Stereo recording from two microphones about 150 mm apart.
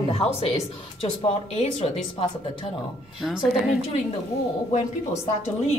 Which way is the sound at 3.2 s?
Centre (ahead or behind).